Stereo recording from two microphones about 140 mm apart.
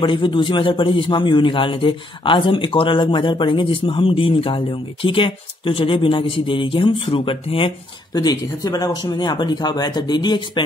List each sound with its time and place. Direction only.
0.0 s a man's voice: 35° left (ahead or behind)